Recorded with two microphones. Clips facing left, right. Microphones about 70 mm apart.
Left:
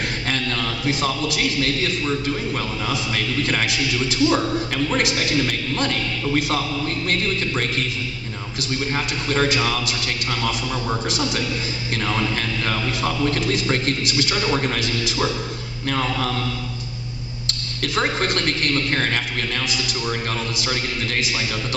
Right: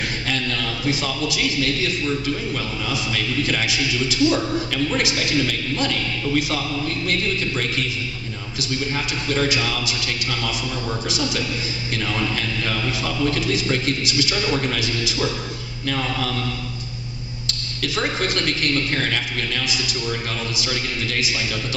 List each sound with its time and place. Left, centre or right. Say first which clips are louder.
0.3 s a man's voice: left 1 dB; left
2.9 s a man's voice: right 1 dB; left
8.5 s a man's voice: left 1 dB; left
11.1 s a man's voice: left 1 dB; left
17.8 s a man's voice: left 2 dB; left